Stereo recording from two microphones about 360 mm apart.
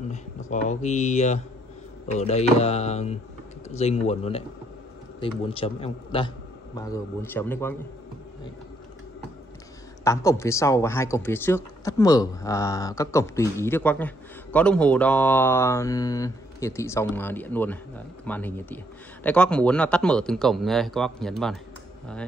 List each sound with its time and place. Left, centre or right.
0.1 s speech: centre
10.0 s speech: centre